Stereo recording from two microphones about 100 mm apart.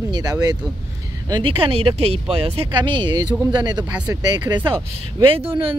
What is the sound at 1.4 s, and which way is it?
Speech, 65° right (ahead or behind).